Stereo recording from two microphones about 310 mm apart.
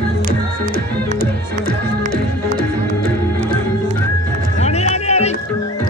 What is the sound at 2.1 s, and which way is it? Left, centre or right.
Music, left.